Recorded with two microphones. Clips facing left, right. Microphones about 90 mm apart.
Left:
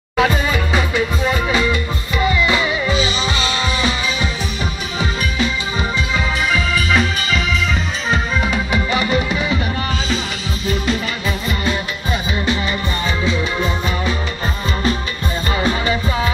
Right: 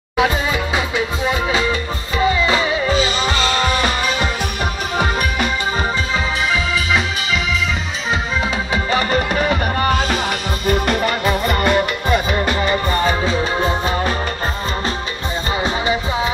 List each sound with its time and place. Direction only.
0.2 s music: 20° right (ahead or behind); by 5.5 s 55° right (ahead or behind)
6.5 s music: 20° right (ahead or behind)
8.7 s music: 40° right (ahead or behind)
15.6 s music: 20° right (ahead or behind)